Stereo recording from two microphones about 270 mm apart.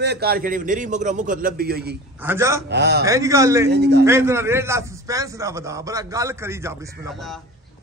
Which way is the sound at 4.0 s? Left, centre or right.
Centre.